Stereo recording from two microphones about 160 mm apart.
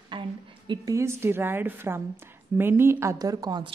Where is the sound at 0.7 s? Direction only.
20° right (ahead or behind).